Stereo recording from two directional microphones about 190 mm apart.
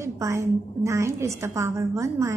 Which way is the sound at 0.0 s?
15° right (ahead or behind).